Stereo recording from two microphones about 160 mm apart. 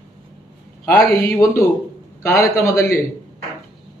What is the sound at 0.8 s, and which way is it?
Speech, 15° left (ahead or behind).